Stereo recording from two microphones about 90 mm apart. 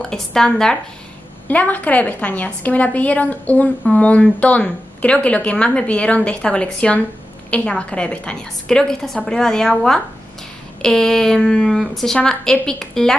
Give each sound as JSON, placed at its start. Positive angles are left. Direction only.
{"t": 0.0, "sound": "a woman's voice", "side_deg": 5}
{"t": 1.5, "sound": "a woman's voice", "side_deg": 15}